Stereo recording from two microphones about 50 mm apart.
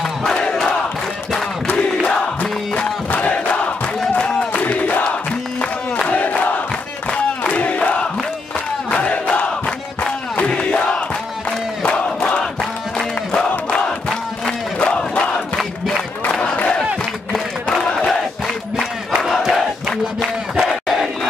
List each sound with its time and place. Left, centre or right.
0.2 s crowd: centre
3.1 s crowd: left
4.2 s a sound: centre
4.7 s battle cry: left
6.0 s crowd: left
7.5 s crowd: left
13.7 s battle cry: centre
14.8 s crowd: left
15.5 s crowd: centre
16.5 s crowd: left
17.3 s a sound: centre
18.8 s battle cry: centre
19.3 s crowd: centre
20.2 s battle cry: centre